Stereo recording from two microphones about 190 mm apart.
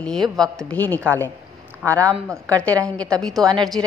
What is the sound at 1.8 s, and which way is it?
Speech, 15° right (ahead or behind).